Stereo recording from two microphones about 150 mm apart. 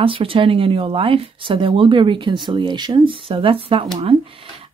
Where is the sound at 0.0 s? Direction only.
35° right (ahead or behind).